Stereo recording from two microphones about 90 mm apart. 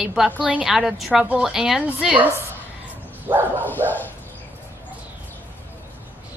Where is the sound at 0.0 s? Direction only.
5° right (ahead or behind).